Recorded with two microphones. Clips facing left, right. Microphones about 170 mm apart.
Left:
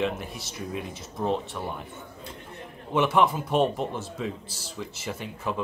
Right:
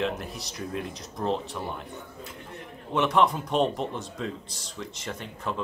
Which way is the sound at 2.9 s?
5° left (ahead or behind).